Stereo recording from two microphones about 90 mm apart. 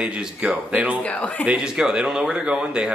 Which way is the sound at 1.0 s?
15° left (ahead or behind).